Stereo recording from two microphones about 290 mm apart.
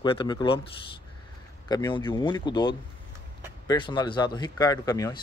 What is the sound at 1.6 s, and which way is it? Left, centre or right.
Speech, centre.